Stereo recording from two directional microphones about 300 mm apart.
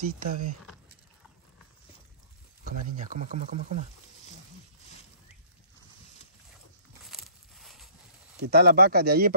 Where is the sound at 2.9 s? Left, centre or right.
Right.